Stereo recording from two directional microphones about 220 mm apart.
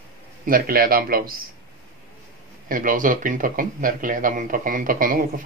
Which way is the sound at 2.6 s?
40° right (ahead or behind).